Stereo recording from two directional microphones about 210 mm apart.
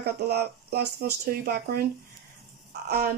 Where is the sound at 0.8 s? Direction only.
40° right (ahead or behind).